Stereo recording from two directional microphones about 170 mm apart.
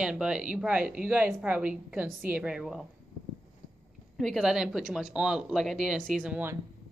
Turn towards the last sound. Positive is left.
turn(degrees=-10)  # may be behind; listen again after turning